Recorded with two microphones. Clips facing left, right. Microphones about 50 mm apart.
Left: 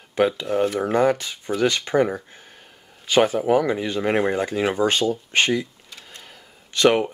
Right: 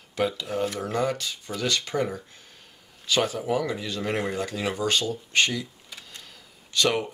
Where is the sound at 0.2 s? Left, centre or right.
Left.